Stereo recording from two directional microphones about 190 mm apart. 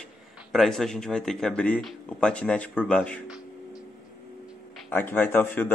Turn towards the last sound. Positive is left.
turn(degrees=10)  # may be behind; listen again after turning